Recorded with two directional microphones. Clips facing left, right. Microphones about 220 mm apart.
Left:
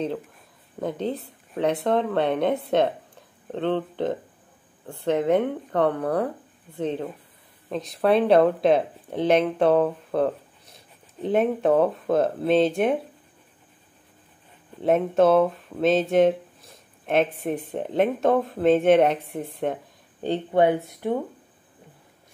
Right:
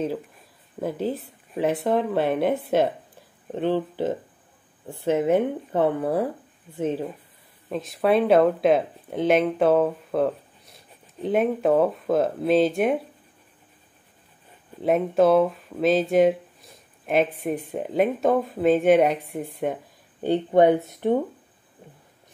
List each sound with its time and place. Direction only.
0.7 s speech: 5° right (ahead or behind)
14.8 s speech: centre (ahead or behind)
20.2 s speech: 15° right (ahead or behind)